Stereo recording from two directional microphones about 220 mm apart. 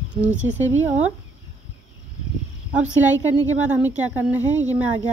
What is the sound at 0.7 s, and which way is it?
Speech, 30° right (ahead or behind).